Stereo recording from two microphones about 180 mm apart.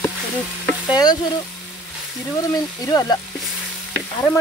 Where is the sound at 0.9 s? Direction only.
25° left (ahead or behind).